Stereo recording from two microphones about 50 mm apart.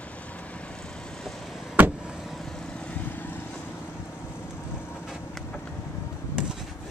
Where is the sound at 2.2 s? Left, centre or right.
Centre.